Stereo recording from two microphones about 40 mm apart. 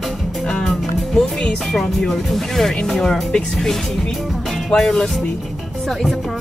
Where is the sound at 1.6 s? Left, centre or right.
Centre.